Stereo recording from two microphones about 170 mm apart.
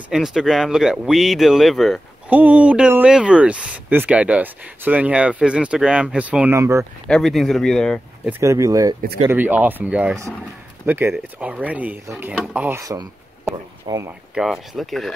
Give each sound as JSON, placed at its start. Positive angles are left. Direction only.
{"t": 0.1, "sound": "speech", "side_deg": -5}
{"t": 7.1, "sound": "speech", "side_deg": 0}
{"t": 8.3, "sound": "speech", "side_deg": -15}
{"t": 14.3, "sound": "speech", "side_deg": 0}